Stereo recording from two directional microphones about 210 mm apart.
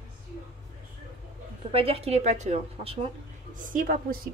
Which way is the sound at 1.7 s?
25° right (ahead or behind).